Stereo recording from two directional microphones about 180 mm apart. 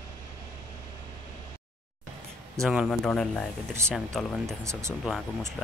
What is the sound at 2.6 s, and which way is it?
Speech, centre (ahead or behind).